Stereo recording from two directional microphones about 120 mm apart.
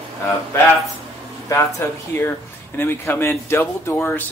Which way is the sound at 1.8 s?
20° left (ahead or behind).